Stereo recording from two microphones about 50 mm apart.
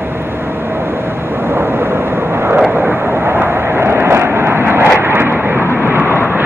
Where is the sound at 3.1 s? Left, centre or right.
Right.